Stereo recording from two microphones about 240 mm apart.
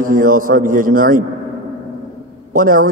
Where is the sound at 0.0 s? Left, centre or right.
Right.